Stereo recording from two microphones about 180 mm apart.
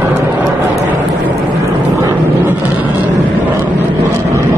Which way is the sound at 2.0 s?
15° right (ahead or behind).